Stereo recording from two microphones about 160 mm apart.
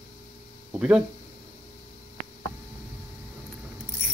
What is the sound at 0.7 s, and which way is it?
Speech, 5° right (ahead or behind).